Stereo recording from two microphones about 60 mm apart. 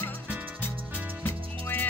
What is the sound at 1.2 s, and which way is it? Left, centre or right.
Music, left.